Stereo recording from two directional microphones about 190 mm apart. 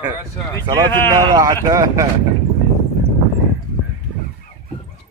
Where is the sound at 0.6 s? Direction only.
25° right (ahead or behind).